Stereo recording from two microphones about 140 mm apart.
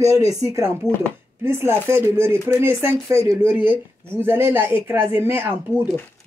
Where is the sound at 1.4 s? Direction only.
15° right (ahead or behind).